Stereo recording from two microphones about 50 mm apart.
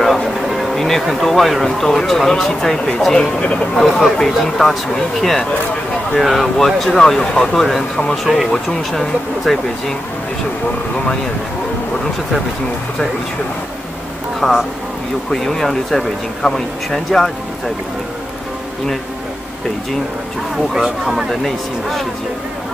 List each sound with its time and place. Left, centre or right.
0.0 s a sound: centre
1.0 s speech: centre; by 3.6 s left
4.2 s speech: centre
14.4 s speech: centre
20.5 s speech: centre